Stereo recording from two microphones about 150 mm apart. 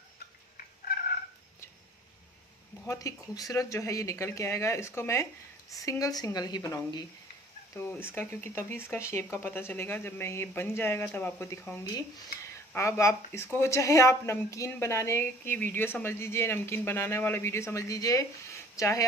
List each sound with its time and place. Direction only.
0.8 s cat: 65° left (ahead or behind)
2.8 s speech: 20° left (ahead or behind)
7.7 s speech: 15° left (ahead or behind)